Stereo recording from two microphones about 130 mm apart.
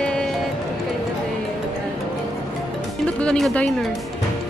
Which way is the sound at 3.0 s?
10° left (ahead or behind).